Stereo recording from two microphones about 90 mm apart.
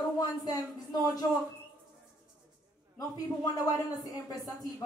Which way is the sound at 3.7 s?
45° left (ahead or behind).